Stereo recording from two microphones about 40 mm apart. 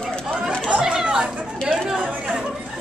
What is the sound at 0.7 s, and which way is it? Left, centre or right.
Chatter, centre.